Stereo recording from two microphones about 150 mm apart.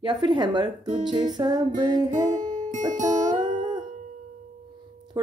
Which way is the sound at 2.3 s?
25° right (ahead or behind).